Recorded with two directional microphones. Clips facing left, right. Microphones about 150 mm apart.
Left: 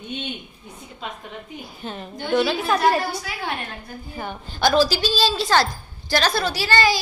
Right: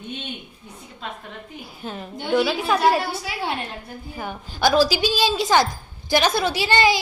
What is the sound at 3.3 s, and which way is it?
Speech, 30° right (ahead or behind).